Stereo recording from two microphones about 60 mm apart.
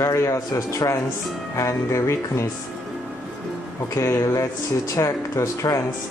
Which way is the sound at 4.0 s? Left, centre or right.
Left.